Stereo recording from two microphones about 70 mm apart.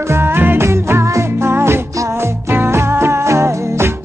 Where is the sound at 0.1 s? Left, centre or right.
Right.